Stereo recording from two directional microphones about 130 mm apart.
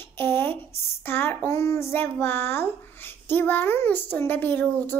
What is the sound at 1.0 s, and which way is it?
A child's voice, 15° left (ahead or behind).